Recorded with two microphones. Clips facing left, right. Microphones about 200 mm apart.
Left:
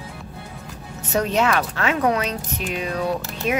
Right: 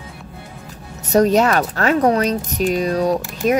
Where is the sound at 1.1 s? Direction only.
40° right (ahead or behind).